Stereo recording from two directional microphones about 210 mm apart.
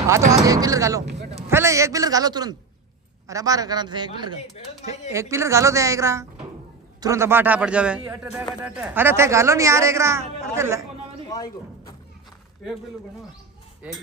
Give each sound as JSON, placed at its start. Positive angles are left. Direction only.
{"t": 0.3, "sound": "a man's voice", "side_deg": -15}
{"t": 11.2, "sound": "a man's voice", "side_deg": 15}